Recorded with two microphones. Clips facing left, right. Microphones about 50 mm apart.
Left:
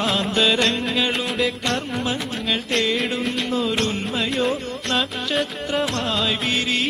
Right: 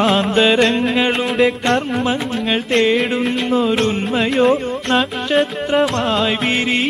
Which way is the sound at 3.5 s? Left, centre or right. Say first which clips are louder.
Right 7 dB; centre.